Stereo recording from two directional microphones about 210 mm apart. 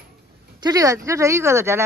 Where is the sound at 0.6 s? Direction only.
15° right (ahead or behind).